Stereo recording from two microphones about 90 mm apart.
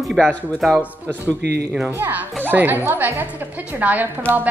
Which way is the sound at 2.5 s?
20° right (ahead or behind).